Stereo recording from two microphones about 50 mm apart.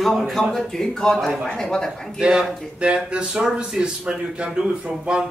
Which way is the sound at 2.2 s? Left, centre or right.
Centre.